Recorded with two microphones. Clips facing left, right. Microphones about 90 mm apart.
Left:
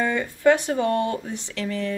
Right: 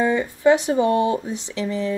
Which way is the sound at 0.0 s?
15° right (ahead or behind).